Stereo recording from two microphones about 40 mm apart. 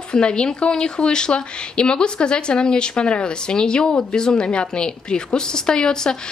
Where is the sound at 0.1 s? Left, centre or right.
Left.